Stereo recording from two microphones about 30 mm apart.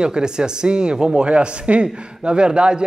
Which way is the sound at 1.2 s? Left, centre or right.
Right.